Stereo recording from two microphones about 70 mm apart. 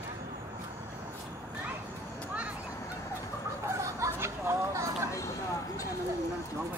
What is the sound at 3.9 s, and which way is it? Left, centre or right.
Chatter, right.